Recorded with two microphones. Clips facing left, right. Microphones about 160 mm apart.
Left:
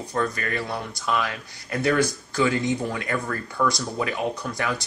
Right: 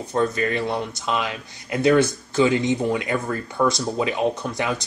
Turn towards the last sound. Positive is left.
turn(degrees=-20)  # may be behind; listen again after turning